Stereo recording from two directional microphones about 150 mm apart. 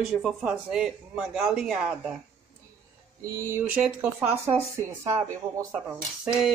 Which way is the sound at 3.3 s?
20° right (ahead or behind).